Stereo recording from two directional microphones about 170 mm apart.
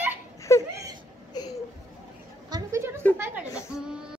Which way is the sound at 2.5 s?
15° right (ahead or behind).